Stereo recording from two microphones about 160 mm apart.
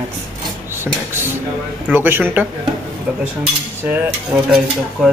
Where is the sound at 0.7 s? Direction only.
15° right (ahead or behind).